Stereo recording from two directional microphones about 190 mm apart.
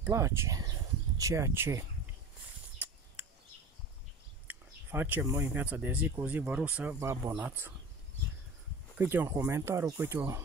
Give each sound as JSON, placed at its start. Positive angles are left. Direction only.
{"t": 0.0, "sound": "speech", "side_deg": -15}
{"t": 4.5, "sound": "speech", "side_deg": -10}
{"t": 8.9, "sound": "speech", "side_deg": -10}